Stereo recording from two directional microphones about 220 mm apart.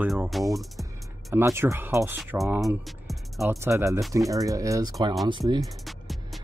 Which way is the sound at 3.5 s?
15° right (ahead or behind).